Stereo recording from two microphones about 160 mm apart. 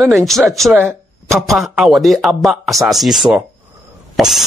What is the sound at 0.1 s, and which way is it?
A man's voice, centre (ahead or behind).